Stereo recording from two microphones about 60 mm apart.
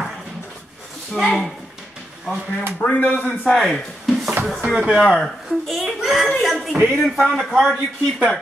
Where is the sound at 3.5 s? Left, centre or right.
Centre.